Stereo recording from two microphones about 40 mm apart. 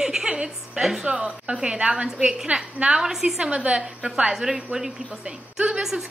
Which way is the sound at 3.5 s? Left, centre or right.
Right.